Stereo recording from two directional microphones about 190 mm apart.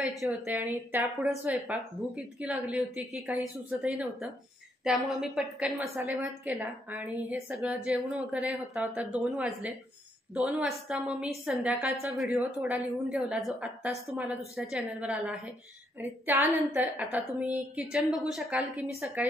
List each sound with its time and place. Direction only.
0.0 s a woman's voice: centre (ahead or behind)
12.5 s a woman's voice: 15° right (ahead or behind)
13.0 s a woman's voice: centre (ahead or behind)